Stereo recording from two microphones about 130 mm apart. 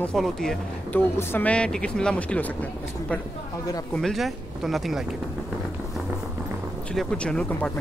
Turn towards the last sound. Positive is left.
turn(degrees=5)  # may be behind; listen again after turning